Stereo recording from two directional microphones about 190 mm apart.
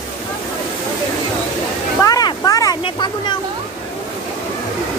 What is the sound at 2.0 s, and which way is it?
Speech, 20° left (ahead or behind).